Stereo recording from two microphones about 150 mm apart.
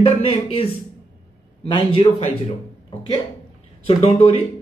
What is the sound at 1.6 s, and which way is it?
Speech, 35° left (ahead or behind).